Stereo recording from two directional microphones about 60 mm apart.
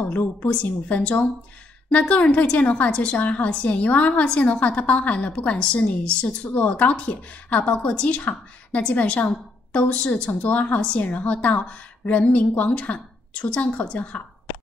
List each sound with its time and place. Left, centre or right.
0.1 s a woman's voice: left